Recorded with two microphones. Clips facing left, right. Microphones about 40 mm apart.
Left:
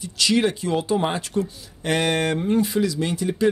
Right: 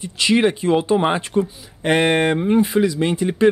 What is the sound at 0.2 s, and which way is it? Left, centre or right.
Speech, right.